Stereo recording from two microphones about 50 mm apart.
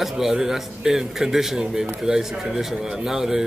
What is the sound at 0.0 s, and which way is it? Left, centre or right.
A man's voice, centre.